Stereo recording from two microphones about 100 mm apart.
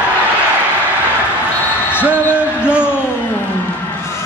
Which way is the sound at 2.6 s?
10° right (ahead or behind).